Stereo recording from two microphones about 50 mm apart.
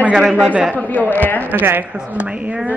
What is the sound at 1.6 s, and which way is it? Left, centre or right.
Speech, right.